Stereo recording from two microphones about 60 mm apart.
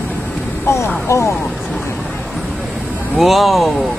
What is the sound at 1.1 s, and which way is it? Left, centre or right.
Speech, left.